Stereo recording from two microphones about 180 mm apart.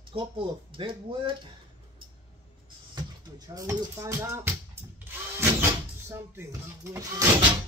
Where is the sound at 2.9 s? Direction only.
20° right (ahead or behind).